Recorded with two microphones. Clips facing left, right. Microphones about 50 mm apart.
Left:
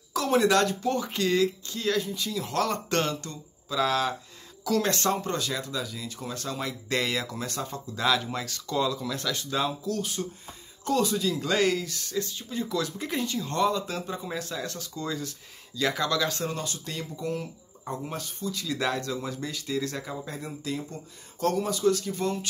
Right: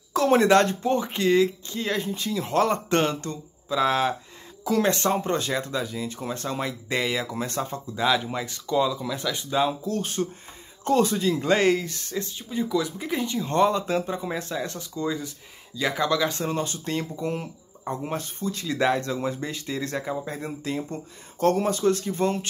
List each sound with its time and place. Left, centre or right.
0.1 s speech: right
2.0 s speech: right
6.6 s speech: centre
7.4 s speech: right
7.9 s speech: centre
9.7 s speech: right
12.9 s speech: centre
13.2 s speech: right